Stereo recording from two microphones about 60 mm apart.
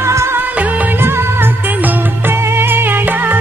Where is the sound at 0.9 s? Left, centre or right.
Right.